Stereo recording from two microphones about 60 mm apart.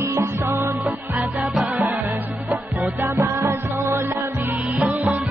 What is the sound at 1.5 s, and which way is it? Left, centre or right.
Music, right.